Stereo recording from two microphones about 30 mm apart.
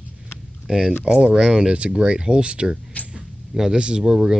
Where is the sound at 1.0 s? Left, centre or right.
Right.